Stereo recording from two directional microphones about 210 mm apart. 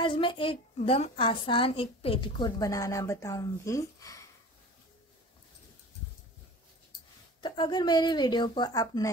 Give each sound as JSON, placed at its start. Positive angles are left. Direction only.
{"t": 0.0, "sound": "a woman's voice", "side_deg": 25}
{"t": 7.4, "sound": "a woman's voice", "side_deg": 20}